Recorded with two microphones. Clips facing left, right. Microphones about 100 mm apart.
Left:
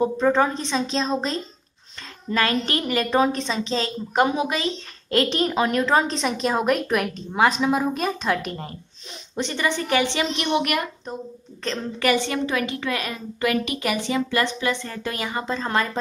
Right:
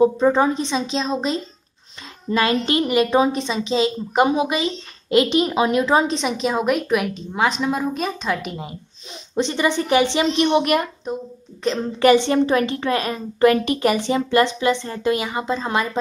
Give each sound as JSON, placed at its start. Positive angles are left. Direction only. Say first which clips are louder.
{"t": 0.0, "sound": "a woman's voice", "louder": "right 4 dB", "side_deg": -10}
{"t": 9.3, "sound": "a woman's voice", "louder": "right 5 dB", "side_deg": -20}
{"t": 12.0, "sound": "a woman's voice", "louder": "right 8 dB", "side_deg": -30}